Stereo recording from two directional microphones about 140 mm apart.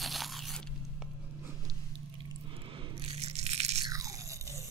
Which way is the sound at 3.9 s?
25° right (ahead or behind).